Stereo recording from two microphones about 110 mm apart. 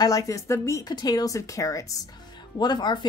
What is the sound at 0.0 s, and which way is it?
Speech, 30° left (ahead or behind).